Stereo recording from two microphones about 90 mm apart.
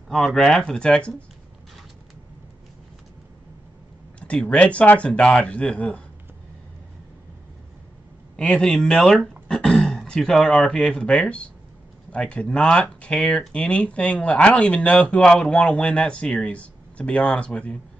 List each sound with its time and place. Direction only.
0.1 s speech: 5° left (ahead or behind)
4.2 s speech: 15° left (ahead or behind)
8.4 s speech: 10° left (ahead or behind)